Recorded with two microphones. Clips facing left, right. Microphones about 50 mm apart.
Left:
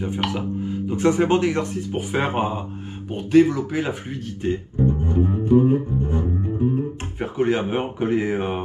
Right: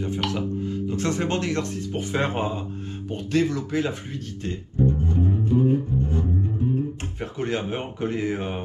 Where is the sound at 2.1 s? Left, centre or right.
Centre.